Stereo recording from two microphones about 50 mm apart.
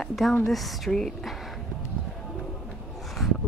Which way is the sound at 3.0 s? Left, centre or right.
Centre.